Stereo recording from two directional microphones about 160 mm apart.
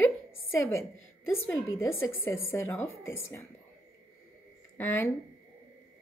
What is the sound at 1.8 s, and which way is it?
A woman's voice, 15° left (ahead or behind).